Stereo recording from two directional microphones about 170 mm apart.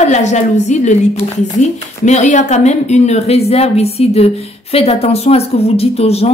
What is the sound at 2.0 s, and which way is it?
Speech, 45° left (ahead or behind).